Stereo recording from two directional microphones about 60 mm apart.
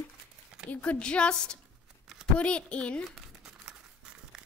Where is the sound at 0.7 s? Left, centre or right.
Left.